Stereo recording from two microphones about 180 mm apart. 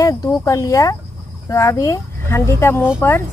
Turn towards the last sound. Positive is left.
turn(degrees=15)  # may be behind; listen again after turning